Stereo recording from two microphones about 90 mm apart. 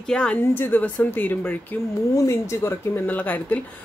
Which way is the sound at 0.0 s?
10° left (ahead or behind).